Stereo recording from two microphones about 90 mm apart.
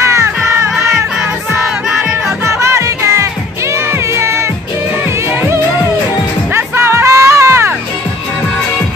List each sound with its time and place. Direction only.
0.0 s music: 35° right (ahead or behind)
2.4 s music: 30° right (ahead or behind)